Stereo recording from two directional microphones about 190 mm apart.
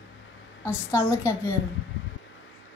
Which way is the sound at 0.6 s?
15° left (ahead or behind).